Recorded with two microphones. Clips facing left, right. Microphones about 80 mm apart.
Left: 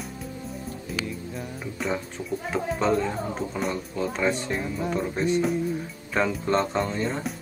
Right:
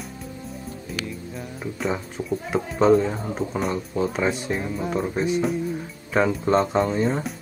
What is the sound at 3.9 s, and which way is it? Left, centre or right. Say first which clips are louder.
Speech: right 3 dB; centre.